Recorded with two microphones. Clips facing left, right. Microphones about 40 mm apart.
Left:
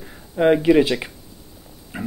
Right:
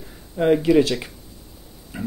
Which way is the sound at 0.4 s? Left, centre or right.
Left.